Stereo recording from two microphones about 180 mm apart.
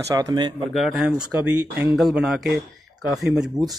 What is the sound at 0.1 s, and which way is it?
Speech, 20° right (ahead or behind).